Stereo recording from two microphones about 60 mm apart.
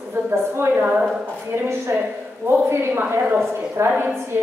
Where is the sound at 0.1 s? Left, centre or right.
Right.